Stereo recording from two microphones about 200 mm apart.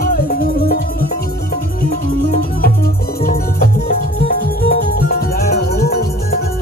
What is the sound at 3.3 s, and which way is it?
Music, 50° left (ahead or behind).